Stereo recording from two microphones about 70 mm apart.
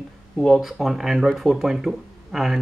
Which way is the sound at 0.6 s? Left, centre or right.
Centre.